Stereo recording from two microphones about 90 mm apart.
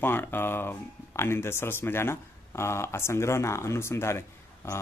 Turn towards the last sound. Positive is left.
turn(degrees=30)  # may be behind; listen again after turning